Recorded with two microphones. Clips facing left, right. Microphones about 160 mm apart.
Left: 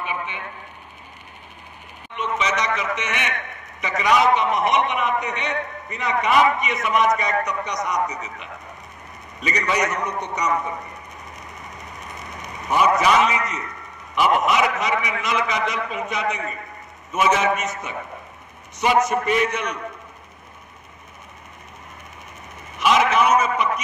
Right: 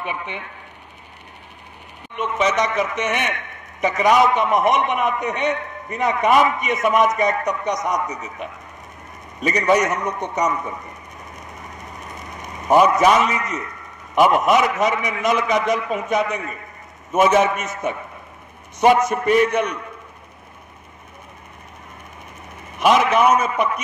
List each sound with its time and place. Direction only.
2.1 s a man's voice: 50° right (ahead or behind)
12.4 s a man's voice: 50° right (ahead or behind)
22.8 s a man's voice: 50° right (ahead or behind)